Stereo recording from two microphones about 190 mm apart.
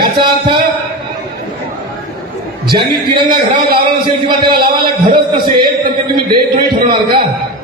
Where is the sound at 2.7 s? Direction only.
25° right (ahead or behind).